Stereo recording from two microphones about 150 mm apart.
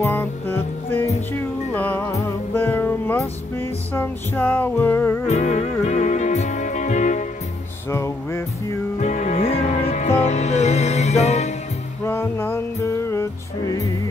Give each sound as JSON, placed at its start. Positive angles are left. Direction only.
{"t": 0.0, "sound": "music", "side_deg": 15}
{"t": 5.3, "sound": "music", "side_deg": 50}
{"t": 7.9, "sound": "music", "side_deg": 15}
{"t": 9.0, "sound": "music", "side_deg": 55}
{"t": 12.0, "sound": "music", "side_deg": 15}